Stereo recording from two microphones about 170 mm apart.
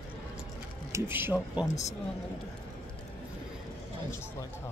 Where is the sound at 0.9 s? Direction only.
15° right (ahead or behind).